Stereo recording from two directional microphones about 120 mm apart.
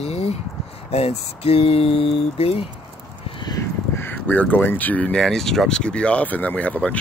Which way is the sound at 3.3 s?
40° left (ahead or behind).